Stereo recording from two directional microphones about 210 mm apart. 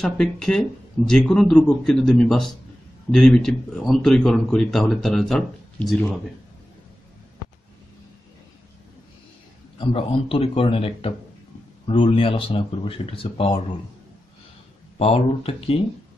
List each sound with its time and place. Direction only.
0.0 s speech: 5° left (ahead or behind)
9.8 s speech: 25° left (ahead or behind)
15.0 s speech: 25° left (ahead or behind)